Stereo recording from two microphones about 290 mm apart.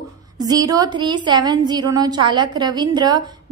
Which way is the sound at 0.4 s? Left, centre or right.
Centre.